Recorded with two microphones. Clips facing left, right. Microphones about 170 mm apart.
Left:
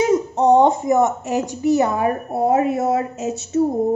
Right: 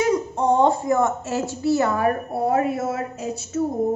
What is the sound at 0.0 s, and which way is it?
A woman's voice, 20° left (ahead or behind).